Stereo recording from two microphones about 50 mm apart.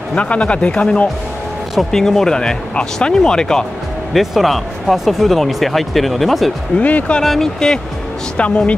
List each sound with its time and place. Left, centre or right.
0.1 s speech: left
1.9 s speech: centre
4.1 s speech: centre
6.8 s speech: left
7.2 s speech: centre
8.4 s speech: left